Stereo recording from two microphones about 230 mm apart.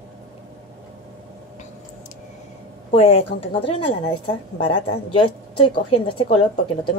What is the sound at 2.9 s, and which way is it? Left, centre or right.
Speech, left.